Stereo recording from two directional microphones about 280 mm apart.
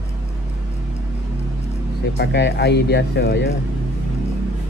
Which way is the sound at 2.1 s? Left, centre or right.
Left.